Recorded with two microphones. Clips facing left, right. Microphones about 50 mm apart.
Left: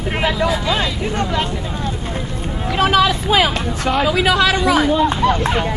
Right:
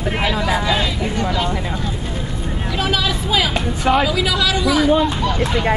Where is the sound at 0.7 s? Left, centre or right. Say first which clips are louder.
Left 1 dB; left.